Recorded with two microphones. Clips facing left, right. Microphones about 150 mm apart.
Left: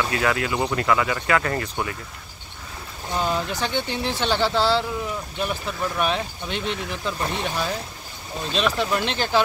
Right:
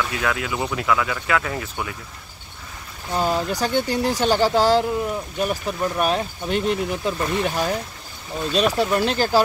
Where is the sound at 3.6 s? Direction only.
40° right (ahead or behind).